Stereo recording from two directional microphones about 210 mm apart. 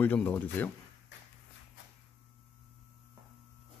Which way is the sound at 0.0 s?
10° left (ahead or behind).